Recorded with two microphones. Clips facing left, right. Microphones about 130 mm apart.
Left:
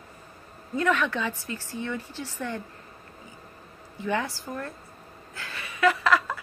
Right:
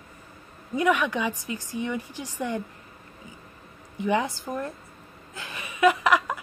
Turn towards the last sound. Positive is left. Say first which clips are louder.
# right 2 dB
turn(degrees=-15)  # may be behind; listen again after turning